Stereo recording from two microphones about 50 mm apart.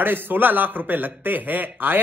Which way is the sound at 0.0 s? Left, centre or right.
Right.